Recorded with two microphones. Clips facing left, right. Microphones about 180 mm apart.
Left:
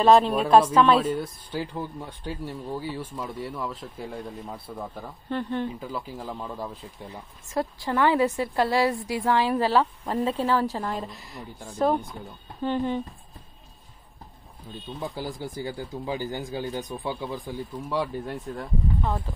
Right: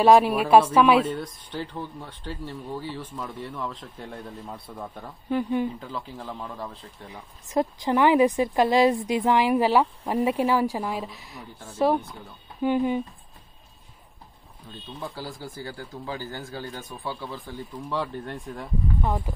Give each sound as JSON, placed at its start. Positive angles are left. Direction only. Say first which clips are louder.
{"t": 0.0, "sound": "a woman's voice", "louder": "right 1 dB", "side_deg": -10}
{"t": 1.0, "sound": "speech", "louder": "left 3 dB", "side_deg": 10}
{"t": 5.3, "sound": "a woman's voice", "louder": "right 4 dB", "side_deg": -10}
{"t": 5.8, "sound": "speech", "louder": "left 2 dB", "side_deg": 10}
{"t": 7.1, "sound": "a woman's voice", "louder": "left 1 dB", "side_deg": -20}
{"t": 14.7, "sound": "speech", "louder": "left 3 dB", "side_deg": 10}
{"t": 18.9, "sound": "a woman's voice", "louder": "right 1 dB", "side_deg": -10}